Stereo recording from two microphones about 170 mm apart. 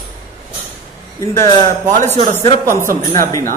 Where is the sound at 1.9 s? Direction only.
50° right (ahead or behind).